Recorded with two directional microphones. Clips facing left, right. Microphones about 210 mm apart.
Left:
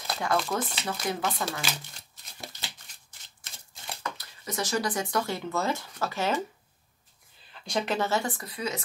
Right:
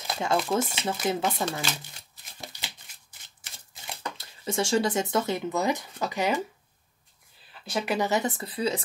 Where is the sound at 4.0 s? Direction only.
25° right (ahead or behind).